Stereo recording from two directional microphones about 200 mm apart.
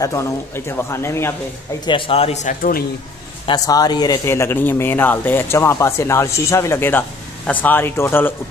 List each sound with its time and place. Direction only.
0.0 s speech: 15° left (ahead or behind)
1.9 s a man's voice: 25° left (ahead or behind)
3.4 s speech: 20° left (ahead or behind)